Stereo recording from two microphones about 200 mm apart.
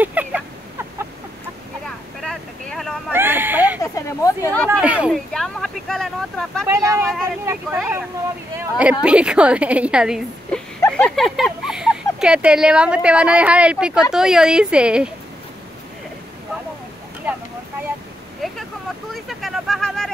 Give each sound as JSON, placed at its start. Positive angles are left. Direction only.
{"t": 0.0, "sound": "a sound", "side_deg": -10}
{"t": 2.2, "sound": "vehicle", "side_deg": 5}
{"t": 3.1, "sound": "a sound", "side_deg": -10}
{"t": 3.8, "sound": "speech", "side_deg": 15}
{"t": 4.6, "sound": "speech", "side_deg": -10}
{"t": 6.7, "sound": "speech", "side_deg": -15}
{"t": 7.7, "sound": "speech", "side_deg": -5}
{"t": 18.4, "sound": "vehicle", "side_deg": 0}
{"t": 19.1, "sound": "a sound", "side_deg": 0}